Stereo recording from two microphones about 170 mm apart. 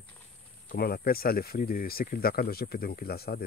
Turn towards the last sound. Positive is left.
turn(degrees=65)  # may be behind; listen again after turning